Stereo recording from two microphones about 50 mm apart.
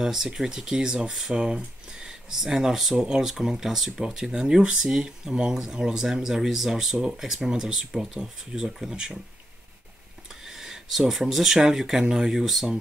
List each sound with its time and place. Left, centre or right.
0.0 s speech: centre
10.4 s speech: centre